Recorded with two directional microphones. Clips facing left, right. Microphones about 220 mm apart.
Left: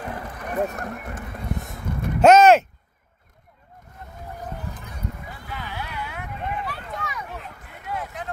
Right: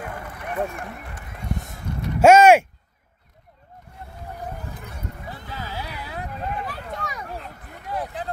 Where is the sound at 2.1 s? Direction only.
10° right (ahead or behind).